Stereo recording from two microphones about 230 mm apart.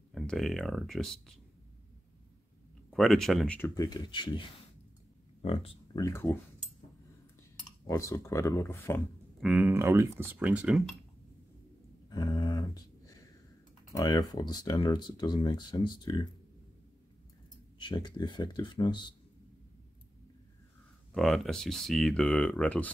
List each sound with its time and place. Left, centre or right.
0.1 s speech: centre
2.9 s speech: centre
7.8 s speech: centre
9.4 s speech: centre
12.1 s a sound: centre
13.9 s speech: centre
17.7 s speech: centre
21.1 s speech: centre